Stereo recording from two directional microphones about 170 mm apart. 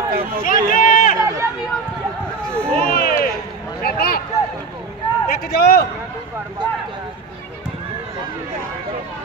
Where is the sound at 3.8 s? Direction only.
65° left (ahead or behind).